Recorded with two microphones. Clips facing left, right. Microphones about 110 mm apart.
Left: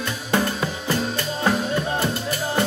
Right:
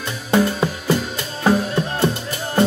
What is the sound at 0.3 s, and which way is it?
Music, 15° right (ahead or behind).